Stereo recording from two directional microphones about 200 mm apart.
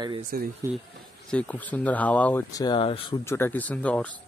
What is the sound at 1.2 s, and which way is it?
Speech, 5° left (ahead or behind).